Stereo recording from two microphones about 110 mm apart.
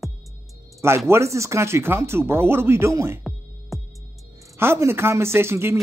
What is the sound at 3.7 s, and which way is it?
Music, centre (ahead or behind).